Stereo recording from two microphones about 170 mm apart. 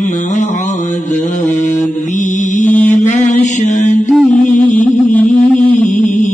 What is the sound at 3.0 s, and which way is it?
Mantra, 45° left (ahead or behind).